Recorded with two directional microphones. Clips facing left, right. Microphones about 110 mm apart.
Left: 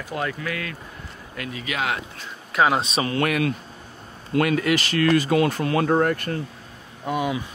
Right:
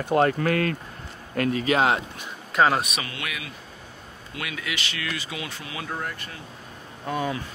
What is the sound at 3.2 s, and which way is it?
Speech, 55° left (ahead or behind).